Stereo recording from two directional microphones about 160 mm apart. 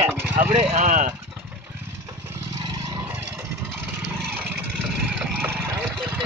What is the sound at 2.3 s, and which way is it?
Vehicle, 20° right (ahead or behind).